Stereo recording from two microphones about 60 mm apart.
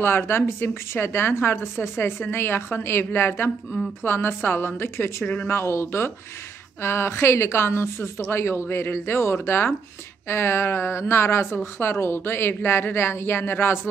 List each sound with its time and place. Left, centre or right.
0.0 s a woman's voice: left
5.2 s speech: left
5.5 s a woman's voice: left